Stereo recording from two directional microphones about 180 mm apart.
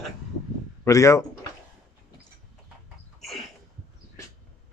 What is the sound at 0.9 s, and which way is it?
Speech, 15° left (ahead or behind).